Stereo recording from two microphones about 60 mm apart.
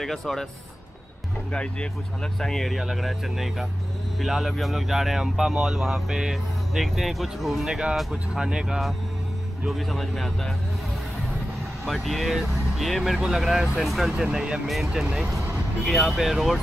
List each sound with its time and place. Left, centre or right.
0.0 s speech: centre
1.5 s speech: centre
2.4 s speech: centre
11.8 s speech: centre
14.1 s speech: centre
14.9 s speech: centre
15.8 s speech: centre